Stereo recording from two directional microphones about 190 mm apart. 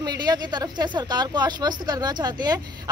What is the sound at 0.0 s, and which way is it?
Speech, 20° right (ahead or behind).